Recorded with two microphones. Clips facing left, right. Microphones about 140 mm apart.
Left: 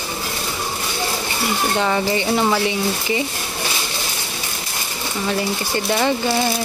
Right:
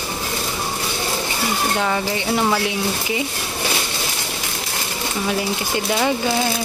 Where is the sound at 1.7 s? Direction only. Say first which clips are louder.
Left 2 dB; centre (ahead or behind).